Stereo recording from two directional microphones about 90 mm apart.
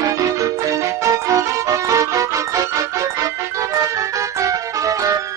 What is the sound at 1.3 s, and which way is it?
Music, 35° right (ahead or behind).